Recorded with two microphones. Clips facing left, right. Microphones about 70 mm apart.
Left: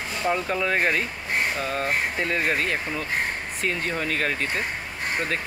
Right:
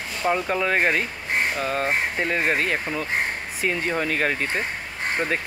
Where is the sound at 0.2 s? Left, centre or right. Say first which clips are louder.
Right 2 dB; centre.